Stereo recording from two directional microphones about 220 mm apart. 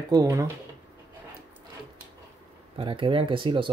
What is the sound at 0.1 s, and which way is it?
Speech, 15° right (ahead or behind).